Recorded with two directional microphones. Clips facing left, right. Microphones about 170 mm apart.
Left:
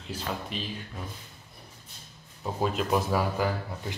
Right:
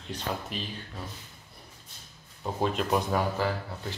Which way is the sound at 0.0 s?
5° left (ahead or behind).